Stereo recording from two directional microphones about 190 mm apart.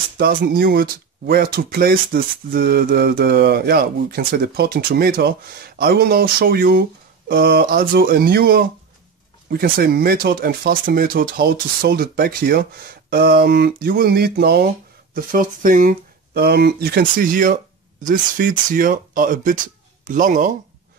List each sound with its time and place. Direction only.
0.2 s speech: 50° right (ahead or behind)
15.1 s speech: 45° right (ahead or behind)